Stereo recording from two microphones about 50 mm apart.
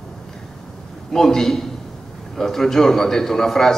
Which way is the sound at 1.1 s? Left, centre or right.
Centre.